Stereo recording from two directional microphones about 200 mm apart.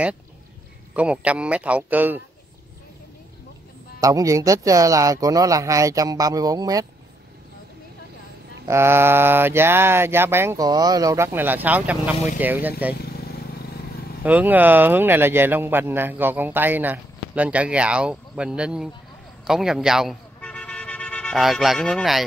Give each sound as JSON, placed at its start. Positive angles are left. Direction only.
{"t": 0.9, "sound": "a man's voice", "side_deg": -5}
{"t": 4.0, "sound": "a man's voice", "side_deg": -15}
{"t": 8.6, "sound": "a man's voice", "side_deg": -10}
{"t": 14.2, "sound": "a man's voice", "side_deg": -10}
{"t": 19.4, "sound": "vehicle", "side_deg": 0}